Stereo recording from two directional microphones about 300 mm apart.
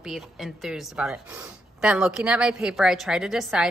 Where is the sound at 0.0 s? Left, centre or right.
Centre.